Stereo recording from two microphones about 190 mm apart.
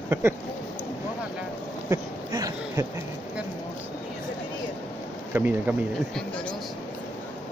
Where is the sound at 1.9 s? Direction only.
15° right (ahead or behind).